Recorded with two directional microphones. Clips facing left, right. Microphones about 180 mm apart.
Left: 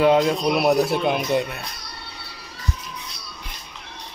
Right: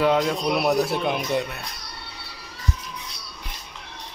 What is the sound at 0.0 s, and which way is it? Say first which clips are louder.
Speech: left 4 dB; 15° left (ahead or behind).